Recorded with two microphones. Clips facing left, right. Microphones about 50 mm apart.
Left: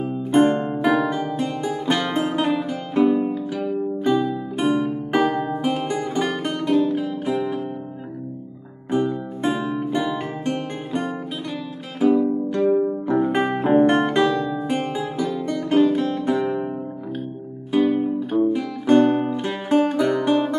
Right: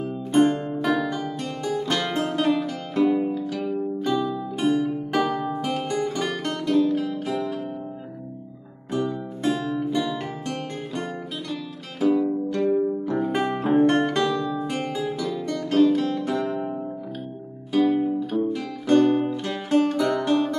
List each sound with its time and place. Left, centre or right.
0.0 s music: centre
8.9 s music: left
17.6 s music: centre